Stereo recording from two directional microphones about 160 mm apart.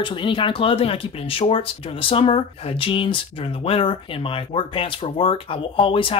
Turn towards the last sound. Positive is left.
turn(degrees=35)  # may be behind; listen again after turning